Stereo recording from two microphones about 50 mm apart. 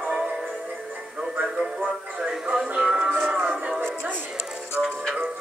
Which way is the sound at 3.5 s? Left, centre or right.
Centre.